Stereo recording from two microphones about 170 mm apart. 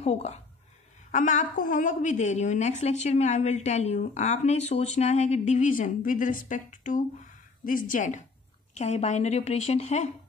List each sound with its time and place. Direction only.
0.0 s a woman's voice: 40° left (ahead or behind)